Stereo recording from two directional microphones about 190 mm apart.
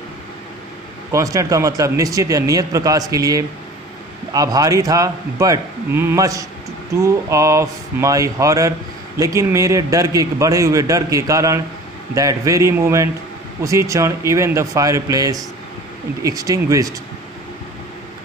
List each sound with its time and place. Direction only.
1.1 s speech: 15° right (ahead or behind)